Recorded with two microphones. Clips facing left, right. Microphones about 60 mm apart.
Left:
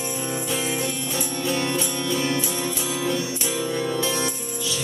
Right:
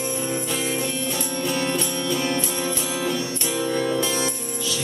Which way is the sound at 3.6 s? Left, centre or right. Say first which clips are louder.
Right 3 dB; right.